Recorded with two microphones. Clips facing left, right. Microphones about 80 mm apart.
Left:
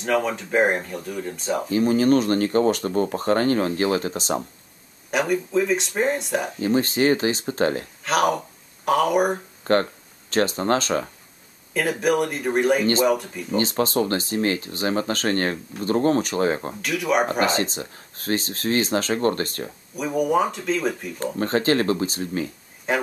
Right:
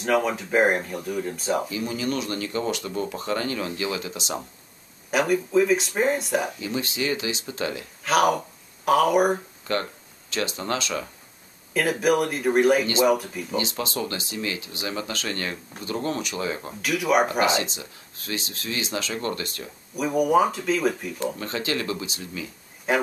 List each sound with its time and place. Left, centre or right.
0.0 s speech: centre
1.7 s speech: left
5.1 s speech: centre
6.6 s speech: left
8.0 s speech: centre
9.7 s speech: left
11.7 s speech: centre
13.6 s speech: left
16.8 s speech: centre
17.3 s speech: left
20.0 s speech: centre
21.4 s speech: left
22.9 s speech: centre